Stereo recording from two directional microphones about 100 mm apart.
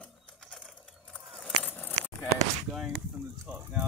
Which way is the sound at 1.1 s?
5° left (ahead or behind).